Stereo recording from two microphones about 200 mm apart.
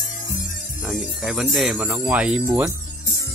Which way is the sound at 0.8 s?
5° right (ahead or behind).